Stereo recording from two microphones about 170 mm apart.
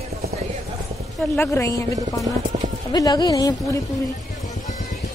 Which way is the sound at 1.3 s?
15° left (ahead or behind).